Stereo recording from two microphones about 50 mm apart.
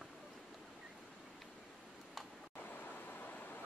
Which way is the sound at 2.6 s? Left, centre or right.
Left.